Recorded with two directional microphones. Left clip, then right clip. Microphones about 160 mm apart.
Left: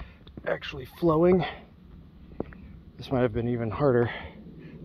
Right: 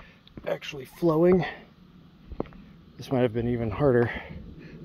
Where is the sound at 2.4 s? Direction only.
35° right (ahead or behind); by 4.8 s 50° right (ahead or behind).